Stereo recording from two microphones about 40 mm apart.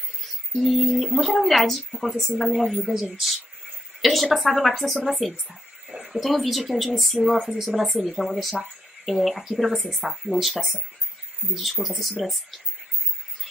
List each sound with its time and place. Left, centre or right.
0.5 s a woman's voice: centre
2.8 s a woman's voice: centre
5.9 s a sound: centre
6.2 s a woman's voice: centre
11.8 s a woman's voice: centre